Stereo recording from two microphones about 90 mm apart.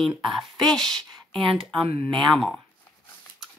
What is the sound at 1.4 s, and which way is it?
Speech, 85° right.